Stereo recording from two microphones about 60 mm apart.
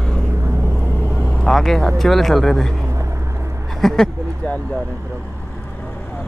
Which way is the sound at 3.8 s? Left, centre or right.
Centre.